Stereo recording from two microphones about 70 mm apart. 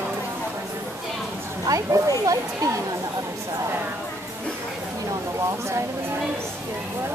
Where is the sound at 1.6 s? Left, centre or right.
Right.